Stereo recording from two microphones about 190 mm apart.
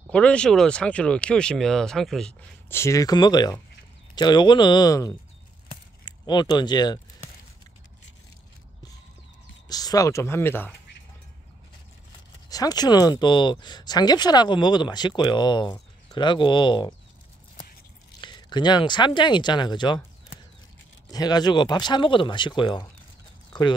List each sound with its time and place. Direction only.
0.1 s speech: 5° left (ahead or behind)
2.7 s speech: 15° left (ahead or behind)
9.7 s speech: 20° left (ahead or behind)
12.4 s speech: 20° left (ahead or behind)
18.2 s speech: 25° left (ahead or behind)
21.1 s speech: 20° left (ahead or behind)